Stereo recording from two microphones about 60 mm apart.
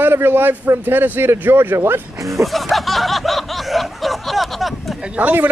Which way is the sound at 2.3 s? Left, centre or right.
Centre.